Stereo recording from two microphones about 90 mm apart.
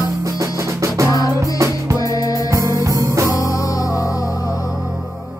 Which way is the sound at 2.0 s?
40° left (ahead or behind).